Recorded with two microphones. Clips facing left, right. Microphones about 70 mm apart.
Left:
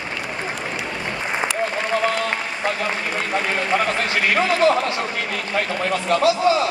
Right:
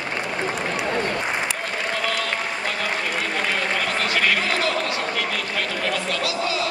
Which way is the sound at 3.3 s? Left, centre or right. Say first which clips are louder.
Left 6 dB; left.